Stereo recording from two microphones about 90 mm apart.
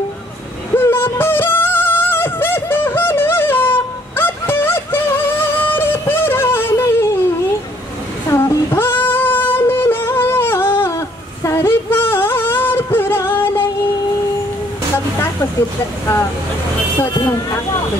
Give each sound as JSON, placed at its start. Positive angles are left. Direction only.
{"t": 0.7, "sound": "music", "side_deg": 25}
{"t": 8.3, "sound": "singing", "side_deg": 25}
{"t": 11.4, "sound": "music", "side_deg": 30}
{"t": 17.0, "sound": "vehicle", "side_deg": 35}